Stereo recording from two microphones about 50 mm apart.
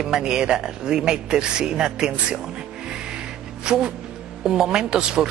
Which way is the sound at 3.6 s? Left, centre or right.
Centre.